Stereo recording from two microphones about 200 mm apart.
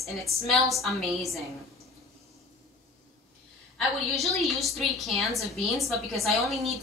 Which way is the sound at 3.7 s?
Centre (ahead or behind).